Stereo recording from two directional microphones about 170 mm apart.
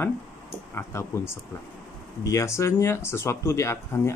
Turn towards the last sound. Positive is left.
turn(degrees=15)  # may be behind; listen again after turning